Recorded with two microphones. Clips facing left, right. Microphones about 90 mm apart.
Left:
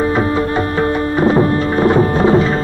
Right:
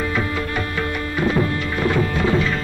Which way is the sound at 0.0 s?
30° left (ahead or behind).